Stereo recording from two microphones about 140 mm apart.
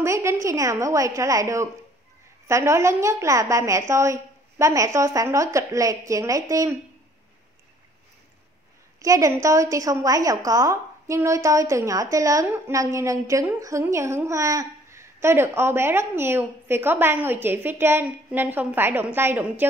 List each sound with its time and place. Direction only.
0.0 s a woman's voice: 20° right (ahead or behind)
9.0 s a woman's voice: 25° right (ahead or behind)